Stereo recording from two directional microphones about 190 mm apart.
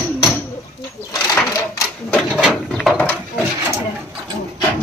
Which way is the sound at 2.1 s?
Centre (ahead or behind).